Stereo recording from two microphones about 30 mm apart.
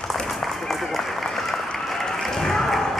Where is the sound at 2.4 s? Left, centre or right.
Centre.